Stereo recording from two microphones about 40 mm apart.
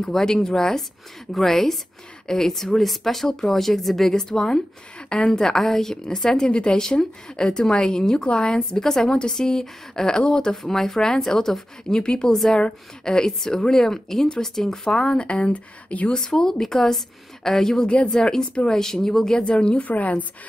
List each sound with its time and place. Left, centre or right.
0.0 s a woman's voice: centre
12.0 s a woman's voice: left
16.1 s speech: centre
17.8 s a woman's voice: left
18.1 s speech: centre
19.4 s a woman's voice: left
19.9 s a woman's voice: left